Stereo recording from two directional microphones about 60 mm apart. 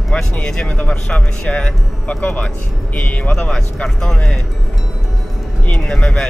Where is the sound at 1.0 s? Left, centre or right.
Centre.